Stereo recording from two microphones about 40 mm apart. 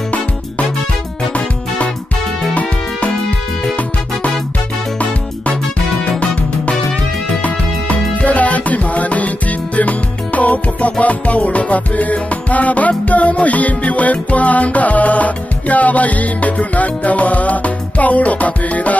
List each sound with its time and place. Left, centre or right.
3.0 s music: left